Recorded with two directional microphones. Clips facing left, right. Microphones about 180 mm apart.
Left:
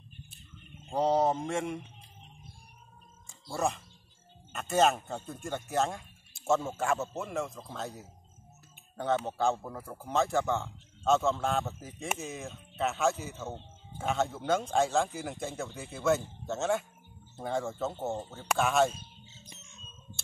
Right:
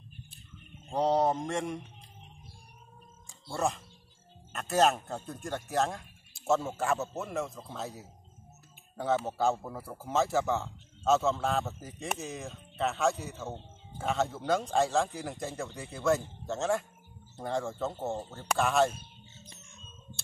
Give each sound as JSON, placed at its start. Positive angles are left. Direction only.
{"t": 0.8, "sound": "speech", "side_deg": 0}
{"t": 3.3, "sound": "a sound", "side_deg": 0}
{"t": 4.5, "sound": "speech", "side_deg": 0}
{"t": 18.9, "sound": "bird", "side_deg": -55}